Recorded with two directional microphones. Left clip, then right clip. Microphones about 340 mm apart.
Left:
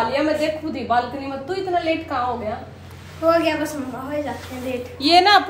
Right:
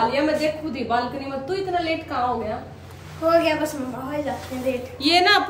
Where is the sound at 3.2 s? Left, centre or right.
Centre.